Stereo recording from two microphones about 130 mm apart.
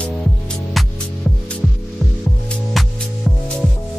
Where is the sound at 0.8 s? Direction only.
Centre (ahead or behind).